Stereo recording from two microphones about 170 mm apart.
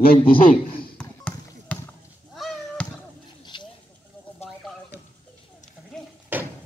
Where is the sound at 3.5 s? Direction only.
25° left (ahead or behind).